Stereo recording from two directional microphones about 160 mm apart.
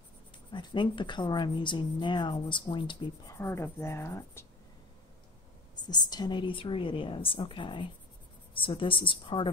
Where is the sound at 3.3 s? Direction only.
15° left (ahead or behind).